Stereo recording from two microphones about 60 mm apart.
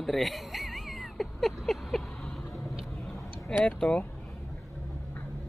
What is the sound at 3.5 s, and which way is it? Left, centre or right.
Speech, centre.